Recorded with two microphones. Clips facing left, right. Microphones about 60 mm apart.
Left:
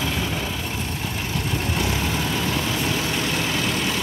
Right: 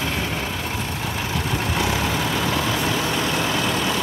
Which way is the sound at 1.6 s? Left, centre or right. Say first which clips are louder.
Right 3 dB; right.